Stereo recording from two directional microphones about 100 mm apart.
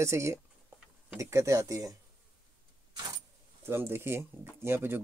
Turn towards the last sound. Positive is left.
turn(degrees=-25)  # may be behind; listen again after turning